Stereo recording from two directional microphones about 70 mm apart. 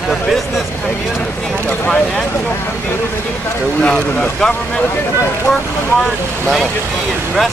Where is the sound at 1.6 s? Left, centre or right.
Centre.